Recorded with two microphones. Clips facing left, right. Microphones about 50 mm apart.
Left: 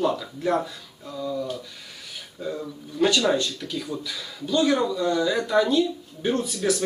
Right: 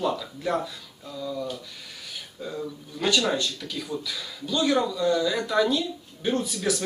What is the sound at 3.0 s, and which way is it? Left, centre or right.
Speech, left.